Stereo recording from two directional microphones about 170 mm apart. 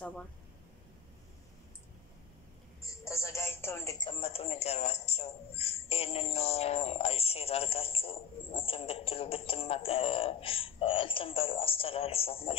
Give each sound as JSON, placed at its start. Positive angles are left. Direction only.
{"t": 2.8, "sound": "music", "side_deg": 15}
{"t": 4.0, "sound": "a man's voice", "side_deg": 35}